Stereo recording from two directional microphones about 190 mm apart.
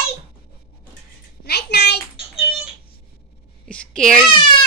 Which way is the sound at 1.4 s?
60° left (ahead or behind).